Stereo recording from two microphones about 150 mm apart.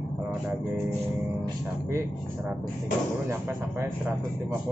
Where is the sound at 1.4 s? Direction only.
20° right (ahead or behind).